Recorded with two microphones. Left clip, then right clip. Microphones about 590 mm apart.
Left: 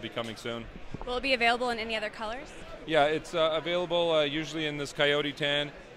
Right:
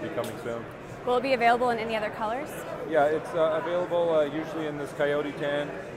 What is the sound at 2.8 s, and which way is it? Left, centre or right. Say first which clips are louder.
Speech: right 1 dB; left.